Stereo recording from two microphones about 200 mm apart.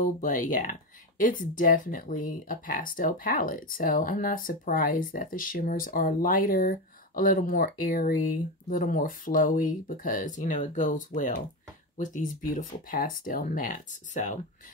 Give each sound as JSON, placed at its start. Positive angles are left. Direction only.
{"t": 0.0, "sound": "speech", "side_deg": 40}